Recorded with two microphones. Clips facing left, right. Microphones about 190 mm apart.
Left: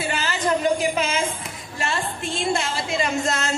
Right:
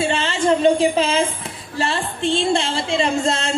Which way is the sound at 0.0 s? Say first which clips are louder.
Right 5 dB; 25° right (ahead or behind).